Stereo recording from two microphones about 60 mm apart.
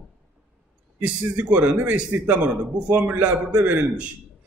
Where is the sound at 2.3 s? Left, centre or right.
Right.